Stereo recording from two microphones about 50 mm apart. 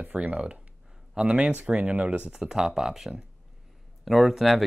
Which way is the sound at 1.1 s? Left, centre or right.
Centre.